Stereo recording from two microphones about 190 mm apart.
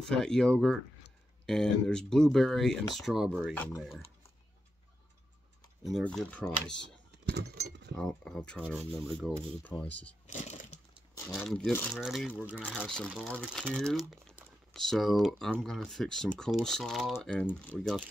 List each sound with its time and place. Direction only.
0.0 s speech: 5° left (ahead or behind)
5.9 s speech: centre (ahead or behind)
7.2 s a sound: 60° right (ahead or behind)
8.0 s speech: 5° left (ahead or behind)
10.2 s a sound: 40° left (ahead or behind)
11.2 s speech: 5° left (ahead or behind)